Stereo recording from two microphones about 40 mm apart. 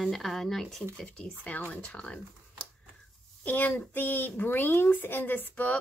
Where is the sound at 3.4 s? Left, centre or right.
Left.